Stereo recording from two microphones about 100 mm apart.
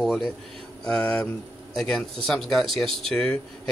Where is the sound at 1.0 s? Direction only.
15° left (ahead or behind).